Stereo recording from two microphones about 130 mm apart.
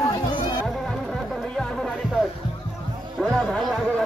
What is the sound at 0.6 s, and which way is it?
Music, 5° left (ahead or behind).